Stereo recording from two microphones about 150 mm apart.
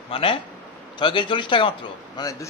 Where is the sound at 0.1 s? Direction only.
35° left (ahead or behind).